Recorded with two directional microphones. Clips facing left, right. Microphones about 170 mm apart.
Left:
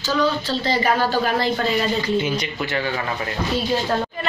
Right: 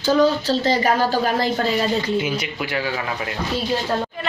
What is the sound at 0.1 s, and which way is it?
Speech, 45° right (ahead or behind).